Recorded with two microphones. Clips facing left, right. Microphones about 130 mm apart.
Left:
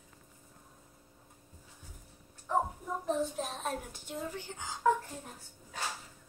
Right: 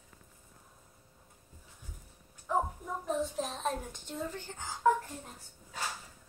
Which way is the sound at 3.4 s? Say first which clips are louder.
Right 2 dB; 5° left (ahead or behind).